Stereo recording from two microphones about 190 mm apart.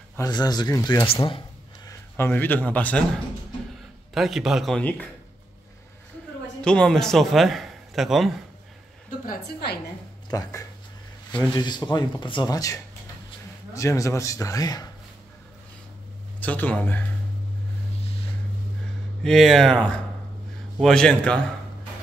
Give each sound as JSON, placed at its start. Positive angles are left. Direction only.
{"t": 0.2, "sound": "speech", "side_deg": 20}
{"t": 1.0, "sound": "speech", "side_deg": 30}
{"t": 1.9, "sound": "a man's voice", "side_deg": 10}
{"t": 4.1, "sound": "speech", "side_deg": 0}
{"t": 6.6, "sound": "a man's voice", "side_deg": 5}
{"t": 9.2, "sound": "a woman's voice", "side_deg": 50}
{"t": 10.3, "sound": "speech", "side_deg": 20}
{"t": 16.3, "sound": "speech", "side_deg": 10}
{"t": 18.0, "sound": "a sound", "side_deg": 30}
{"t": 19.2, "sound": "speech", "side_deg": 0}